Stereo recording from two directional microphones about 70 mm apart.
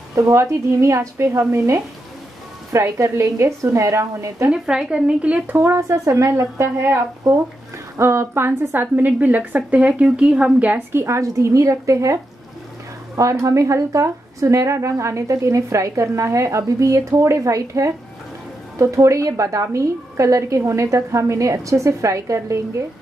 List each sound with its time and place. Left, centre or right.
0.1 s a woman's voice: right
4.5 s speech: centre
5.8 s a woman's voice: right; by 10.8 s centre
10.9 s a woman's voice: right
11.1 s a woman's voice: right